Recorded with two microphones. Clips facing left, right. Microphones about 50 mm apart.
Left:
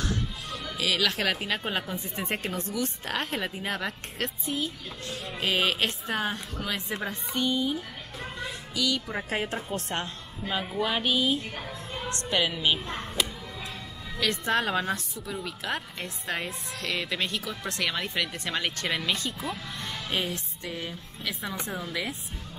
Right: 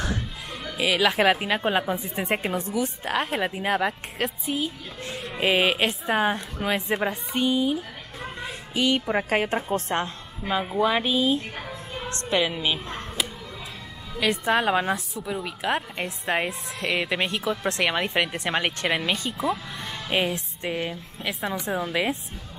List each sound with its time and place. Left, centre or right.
0.0 s music: right
0.7 s a woman's voice: right
8.4 s a woman's voice: right
10.4 s a woman's voice: right
11.5 s music: centre
12.1 s a woman's voice: right
12.7 s a child's voice: centre
14.2 s a woman's voice: centre
19.4 s speech: centre
20.1 s a woman's voice: right
20.6 s a woman's voice: right